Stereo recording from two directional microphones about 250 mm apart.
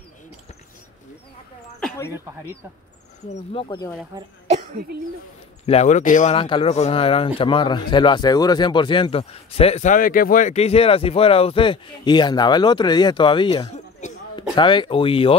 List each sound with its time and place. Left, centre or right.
1.8 s a sound: centre
3.5 s speech: centre
4.1 s cough: right
5.7 s speech: left